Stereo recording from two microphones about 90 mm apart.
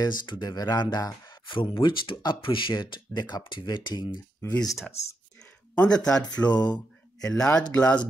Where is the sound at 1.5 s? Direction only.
60° left (ahead or behind).